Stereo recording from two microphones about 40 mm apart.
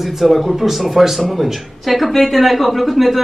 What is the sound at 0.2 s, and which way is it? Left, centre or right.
Speech, centre.